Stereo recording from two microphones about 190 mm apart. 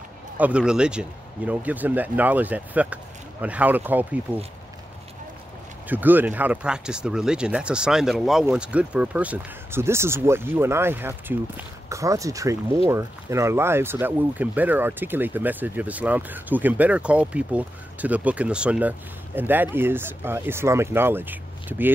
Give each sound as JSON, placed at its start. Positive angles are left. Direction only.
{"t": 0.4, "sound": "speech", "side_deg": -5}
{"t": 5.9, "sound": "speech", "side_deg": -10}